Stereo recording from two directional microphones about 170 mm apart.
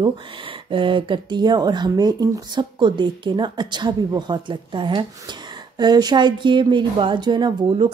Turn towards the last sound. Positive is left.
turn(degrees=-25)  # may be behind; listen again after turning